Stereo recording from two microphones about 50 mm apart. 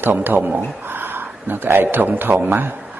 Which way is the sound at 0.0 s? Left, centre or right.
Right.